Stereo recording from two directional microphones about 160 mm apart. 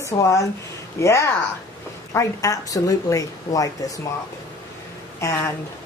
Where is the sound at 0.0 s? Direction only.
20° left (ahead or behind).